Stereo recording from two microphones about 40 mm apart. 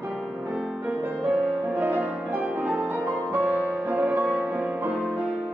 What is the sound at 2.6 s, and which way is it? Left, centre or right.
Music, right.